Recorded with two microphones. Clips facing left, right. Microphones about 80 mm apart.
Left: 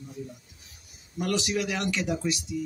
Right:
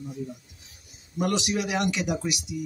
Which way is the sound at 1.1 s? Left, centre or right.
Right.